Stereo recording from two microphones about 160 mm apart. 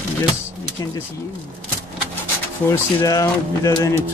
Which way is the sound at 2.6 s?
20° left (ahead or behind).